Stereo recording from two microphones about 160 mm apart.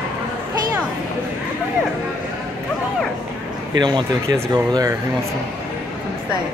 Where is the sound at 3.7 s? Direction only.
25° right (ahead or behind).